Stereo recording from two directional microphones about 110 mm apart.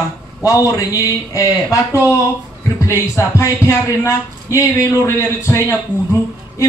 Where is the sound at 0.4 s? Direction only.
30° left (ahead or behind).